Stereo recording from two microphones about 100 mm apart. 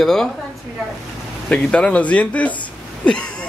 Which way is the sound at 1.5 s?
10° left (ahead or behind).